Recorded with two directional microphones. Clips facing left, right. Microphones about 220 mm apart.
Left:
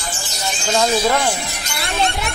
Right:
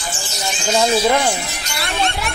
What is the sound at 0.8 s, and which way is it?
Speech, 10° right (ahead or behind).